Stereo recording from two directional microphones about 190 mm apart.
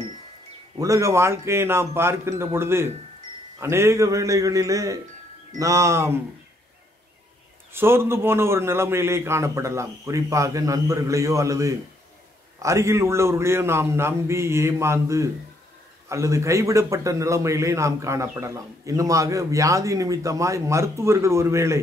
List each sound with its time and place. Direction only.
0.7 s a man's voice: 15° right (ahead or behind)
7.7 s a man's voice: 10° right (ahead or behind)